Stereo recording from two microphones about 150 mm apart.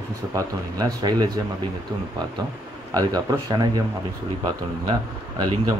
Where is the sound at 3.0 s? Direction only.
25° right (ahead or behind).